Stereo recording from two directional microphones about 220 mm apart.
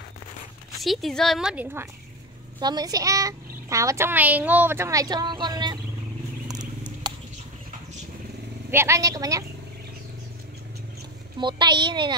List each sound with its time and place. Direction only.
0.7 s a woman's voice: centre (ahead or behind); by 5.8 s 20° right (ahead or behind)
6.4 s a sound: 15° right (ahead or behind)
8.6 s a child's voice: 10° right (ahead or behind)
11.3 s a child's voice: 20° right (ahead or behind)